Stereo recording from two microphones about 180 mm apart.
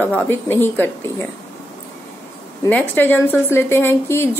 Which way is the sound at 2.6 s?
10° left (ahead or behind).